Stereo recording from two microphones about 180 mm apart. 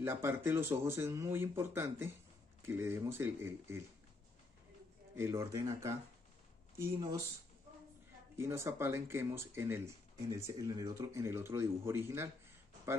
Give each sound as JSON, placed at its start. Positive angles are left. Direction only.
{"t": 0.0, "sound": "speech", "side_deg": -15}
{"t": 5.1, "sound": "speech", "side_deg": -15}
{"t": 8.4, "sound": "speech", "side_deg": -15}